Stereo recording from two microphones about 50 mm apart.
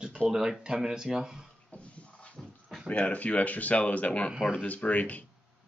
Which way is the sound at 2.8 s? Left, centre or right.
Left.